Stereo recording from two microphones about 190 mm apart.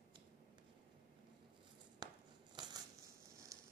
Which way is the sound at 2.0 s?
20° right (ahead or behind).